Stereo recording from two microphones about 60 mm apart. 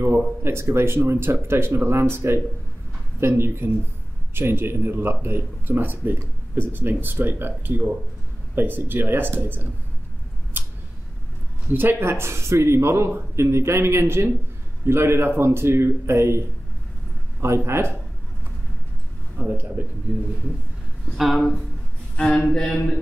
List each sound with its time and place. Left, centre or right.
0.0 s speech: right
10.6 s a sound: right
11.7 s speech: right
19.3 s speech: right
21.2 s speech: centre
22.1 s a sound: centre
22.5 s mantra: centre